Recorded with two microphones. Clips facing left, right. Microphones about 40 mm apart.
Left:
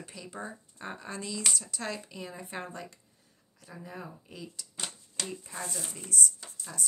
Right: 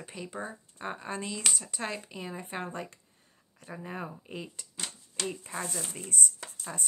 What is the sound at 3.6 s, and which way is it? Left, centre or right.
Speech, right.